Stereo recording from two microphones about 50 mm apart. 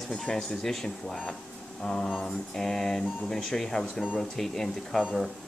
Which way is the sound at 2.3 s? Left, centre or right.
Centre.